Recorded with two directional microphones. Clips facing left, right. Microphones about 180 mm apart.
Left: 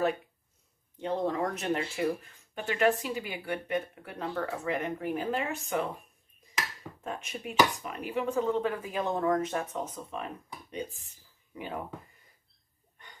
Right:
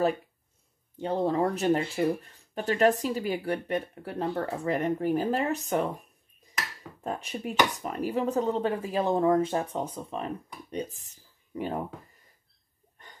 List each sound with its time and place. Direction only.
0.9 s speech: 35° right (ahead or behind)